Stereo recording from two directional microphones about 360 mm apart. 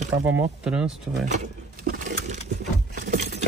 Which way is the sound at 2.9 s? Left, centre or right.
Right.